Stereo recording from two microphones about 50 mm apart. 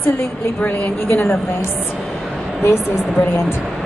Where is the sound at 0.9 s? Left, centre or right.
Left.